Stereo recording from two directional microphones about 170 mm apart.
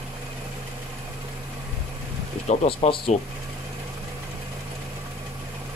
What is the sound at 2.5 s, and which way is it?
Speech, 35° left (ahead or behind).